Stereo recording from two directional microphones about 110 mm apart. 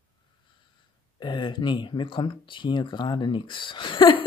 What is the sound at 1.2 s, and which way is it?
Speech, 45° left (ahead or behind).